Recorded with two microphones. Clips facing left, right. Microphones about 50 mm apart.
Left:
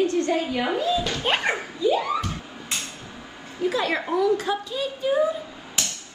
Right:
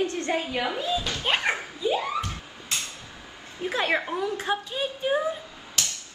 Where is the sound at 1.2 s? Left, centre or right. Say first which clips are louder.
Even; centre.